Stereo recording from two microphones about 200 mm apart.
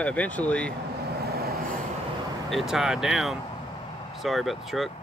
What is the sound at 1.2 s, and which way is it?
Vehicle, 50° right (ahead or behind).